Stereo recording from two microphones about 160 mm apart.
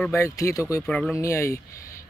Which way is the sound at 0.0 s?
15° left (ahead or behind).